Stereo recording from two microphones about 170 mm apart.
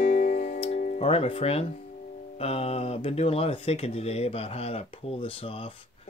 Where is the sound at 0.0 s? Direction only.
55° left (ahead or behind).